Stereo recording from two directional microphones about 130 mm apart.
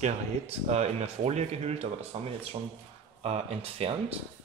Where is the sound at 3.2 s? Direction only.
50° right (ahead or behind).